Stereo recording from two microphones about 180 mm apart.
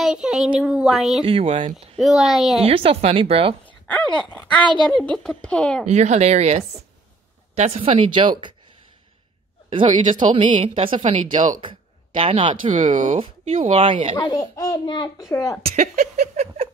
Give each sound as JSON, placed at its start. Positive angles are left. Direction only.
{"t": 0.0, "sound": "speech", "side_deg": -5}
{"t": 1.2, "sound": "a woman's voice", "side_deg": -30}
{"t": 2.0, "sound": "speech", "side_deg": 0}
{"t": 2.6, "sound": "a sound", "side_deg": -30}
{"t": 3.8, "sound": "speech", "side_deg": 5}
{"t": 5.9, "sound": "a sound", "side_deg": -40}
{"t": 7.5, "sound": "a woman's voice", "side_deg": -35}
{"t": 10.1, "sound": "a woman's voice", "side_deg": -25}
{"t": 11.3, "sound": "speech", "side_deg": -45}
{"t": 12.2, "sound": "a woman's voice", "side_deg": -30}
{"t": 12.7, "sound": "speech", "side_deg": -40}
{"t": 13.5, "sound": "a sound", "side_deg": -35}
{"t": 14.1, "sound": "a child's voice", "side_deg": 25}
{"t": 15.6, "sound": "a sound", "side_deg": -40}